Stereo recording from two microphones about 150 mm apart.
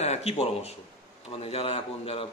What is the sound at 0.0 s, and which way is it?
A man's voice, 45° left (ahead or behind).